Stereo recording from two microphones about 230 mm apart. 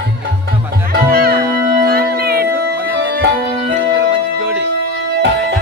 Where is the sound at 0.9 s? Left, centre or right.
Right.